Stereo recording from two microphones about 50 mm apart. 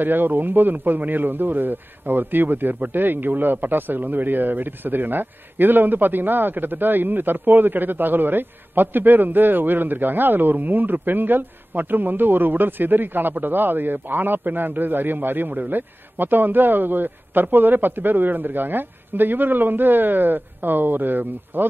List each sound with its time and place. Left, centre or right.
0.0 s a man's voice: right